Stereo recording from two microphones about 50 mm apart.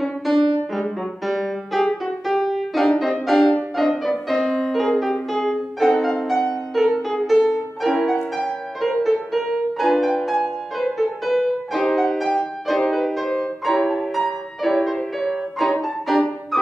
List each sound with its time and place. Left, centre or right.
0.0 s music: centre
8.2 s music: centre
9.3 s music: centre